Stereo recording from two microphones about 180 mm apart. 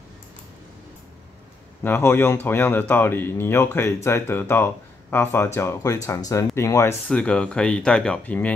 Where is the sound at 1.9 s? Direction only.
10° left (ahead or behind).